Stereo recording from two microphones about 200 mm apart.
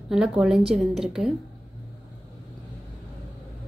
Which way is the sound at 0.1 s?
Centre (ahead or behind).